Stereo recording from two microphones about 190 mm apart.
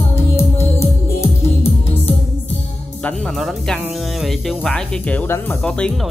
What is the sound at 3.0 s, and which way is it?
Music, centre (ahead or behind).